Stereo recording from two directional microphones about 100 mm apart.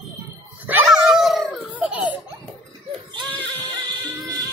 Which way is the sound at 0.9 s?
5° right (ahead or behind).